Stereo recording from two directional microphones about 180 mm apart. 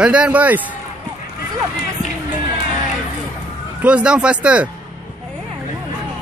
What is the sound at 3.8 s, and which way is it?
Speech, 5° right (ahead or behind).